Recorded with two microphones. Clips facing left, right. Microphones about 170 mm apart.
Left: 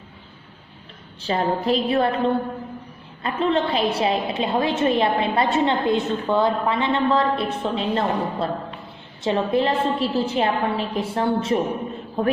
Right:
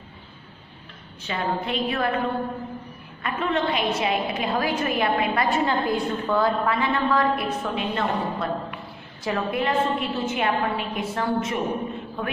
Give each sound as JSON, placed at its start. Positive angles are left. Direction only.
{"t": 1.2, "sound": "a woman's voice", "side_deg": 35}